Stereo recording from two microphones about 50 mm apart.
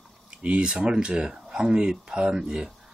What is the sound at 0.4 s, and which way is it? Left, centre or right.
Speech, right.